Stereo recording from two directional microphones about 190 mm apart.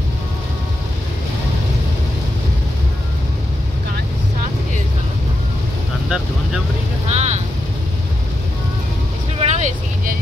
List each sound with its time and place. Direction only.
6.0 s vehicle: 5° right (ahead or behind)
7.1 s vehicle: 35° right (ahead or behind)
9.4 s vehicle: 40° right (ahead or behind)